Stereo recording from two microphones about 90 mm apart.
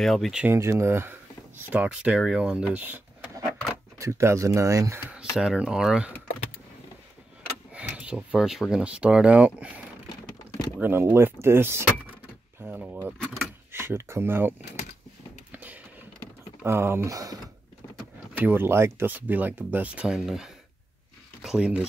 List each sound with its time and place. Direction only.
0.0 s speech: 5° left (ahead or behind)
0.5 s speech: 30° right (ahead or behind)
1.7 s speech: 15° right (ahead or behind)
4.0 s speech: 30° right (ahead or behind)
5.1 s speech: 5° right (ahead or behind)
7.7 s speech: 15° right (ahead or behind)
10.8 s speech: 25° right (ahead or behind)
12.6 s power windows: 15° right (ahead or behind)
13.2 s power windows: 5° left (ahead or behind)
13.7 s speech: 25° right (ahead or behind)
15.5 s a sound: 15° right (ahead or behind)
16.6 s speech: 25° right (ahead or behind)
17.1 s speech: 45° right (ahead or behind)
18.3 s speech: 20° right (ahead or behind)